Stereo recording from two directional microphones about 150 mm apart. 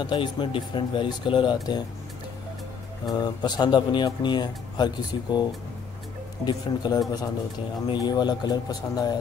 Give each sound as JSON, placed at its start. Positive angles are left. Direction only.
{"t": 0.0, "sound": "speech", "side_deg": 30}
{"t": 3.1, "sound": "speech", "side_deg": 25}